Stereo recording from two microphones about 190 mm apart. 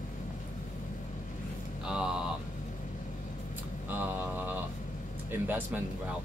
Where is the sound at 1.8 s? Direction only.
5° right (ahead or behind).